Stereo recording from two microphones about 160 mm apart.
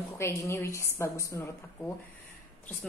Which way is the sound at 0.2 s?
15° left (ahead or behind).